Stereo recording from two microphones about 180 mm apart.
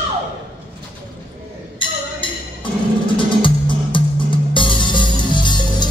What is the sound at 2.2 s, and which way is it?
Music, 25° left (ahead or behind).